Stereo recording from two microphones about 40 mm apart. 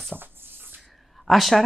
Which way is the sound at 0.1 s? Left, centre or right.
Right.